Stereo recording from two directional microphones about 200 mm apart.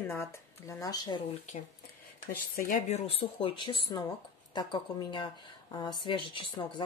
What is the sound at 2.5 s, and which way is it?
A woman's voice, 40° left (ahead or behind).